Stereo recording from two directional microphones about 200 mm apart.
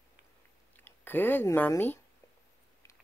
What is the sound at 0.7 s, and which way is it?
Speech, 10° left (ahead or behind).